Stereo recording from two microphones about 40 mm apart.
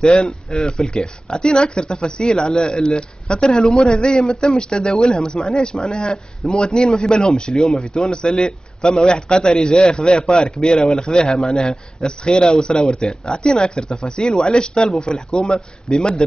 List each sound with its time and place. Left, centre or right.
0.0 s speech: left